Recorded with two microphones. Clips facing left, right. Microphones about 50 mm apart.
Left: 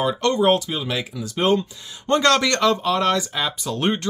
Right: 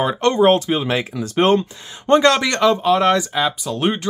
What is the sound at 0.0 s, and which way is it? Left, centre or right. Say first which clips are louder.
Speech: right 4 dB; right.